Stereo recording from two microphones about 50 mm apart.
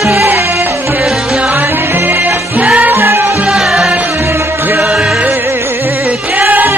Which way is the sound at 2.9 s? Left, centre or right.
Right.